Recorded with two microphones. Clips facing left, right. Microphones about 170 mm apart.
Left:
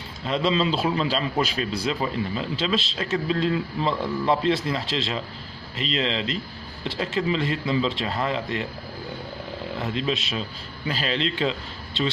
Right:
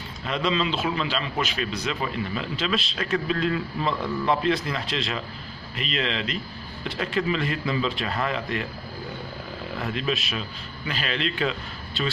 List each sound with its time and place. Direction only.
0.2 s a man's voice: 30° left (ahead or behind)
9.8 s a man's voice: 25° left (ahead or behind)